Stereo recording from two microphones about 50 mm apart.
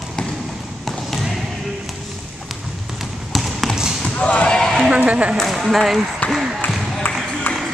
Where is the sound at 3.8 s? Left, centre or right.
Centre.